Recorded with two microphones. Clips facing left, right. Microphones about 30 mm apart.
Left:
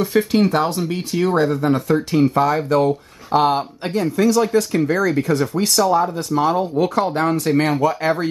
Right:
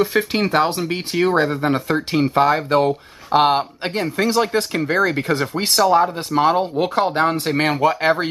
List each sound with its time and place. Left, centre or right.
0.0 s speech: right